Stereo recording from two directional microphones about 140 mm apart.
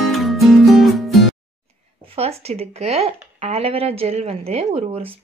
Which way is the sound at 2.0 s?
45° right (ahead or behind).